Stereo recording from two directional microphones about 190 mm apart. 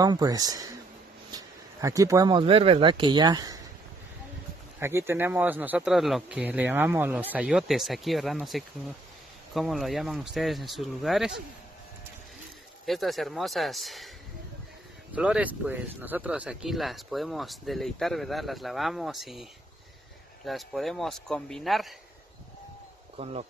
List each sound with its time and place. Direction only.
0.0 s speech: 20° right (ahead or behind)
4.7 s speech: 10° right (ahead or behind)
12.8 s speech: centre (ahead or behind)
15.1 s speech: 5° right (ahead or behind)
20.4 s speech: centre (ahead or behind)
23.1 s speech: 35° right (ahead or behind)